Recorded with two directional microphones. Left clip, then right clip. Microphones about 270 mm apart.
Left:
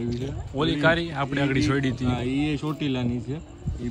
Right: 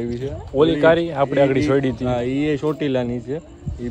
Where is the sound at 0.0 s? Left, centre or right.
Centre.